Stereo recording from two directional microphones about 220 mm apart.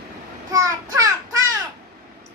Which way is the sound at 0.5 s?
15° right (ahead or behind).